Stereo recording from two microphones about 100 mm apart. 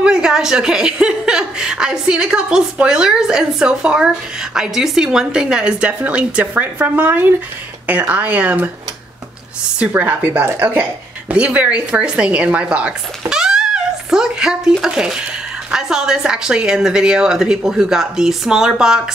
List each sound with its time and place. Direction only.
0.0 s a woman's voice: 5° right (ahead or behind)
9.8 s a woman's voice: 15° right (ahead or behind)